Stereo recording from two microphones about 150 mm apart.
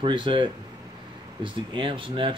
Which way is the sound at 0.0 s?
35° right (ahead or behind).